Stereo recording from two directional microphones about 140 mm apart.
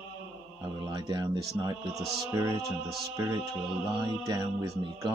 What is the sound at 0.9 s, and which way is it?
Speech, 30° right (ahead or behind).